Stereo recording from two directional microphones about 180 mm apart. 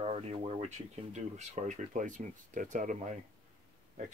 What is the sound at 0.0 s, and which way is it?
Speech, 35° right (ahead or behind).